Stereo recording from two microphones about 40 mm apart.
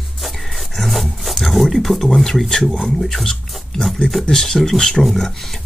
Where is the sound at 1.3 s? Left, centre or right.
Centre.